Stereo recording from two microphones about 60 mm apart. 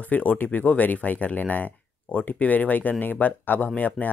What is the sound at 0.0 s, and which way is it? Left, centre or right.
Speech, left.